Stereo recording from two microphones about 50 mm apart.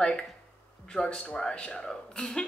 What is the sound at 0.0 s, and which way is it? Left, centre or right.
Speech, centre.